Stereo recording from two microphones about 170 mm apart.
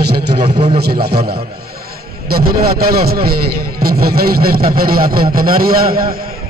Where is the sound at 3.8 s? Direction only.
65° right (ahead or behind).